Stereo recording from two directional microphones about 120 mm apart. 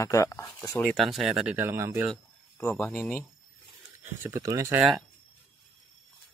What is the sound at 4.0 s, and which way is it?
Speech, 25° right (ahead or behind).